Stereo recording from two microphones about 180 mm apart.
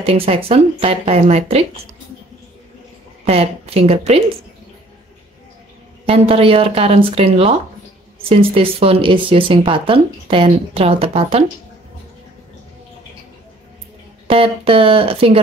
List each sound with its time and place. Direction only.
0.0 s speech: 30° right (ahead or behind)
3.3 s speech: 35° right (ahead or behind)
6.0 s speech: 35° right (ahead or behind)
14.2 s speech: 30° right (ahead or behind)